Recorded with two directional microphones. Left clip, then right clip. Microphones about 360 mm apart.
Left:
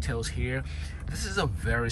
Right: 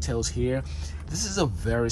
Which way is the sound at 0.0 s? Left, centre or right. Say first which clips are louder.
Right 5 dB; centre.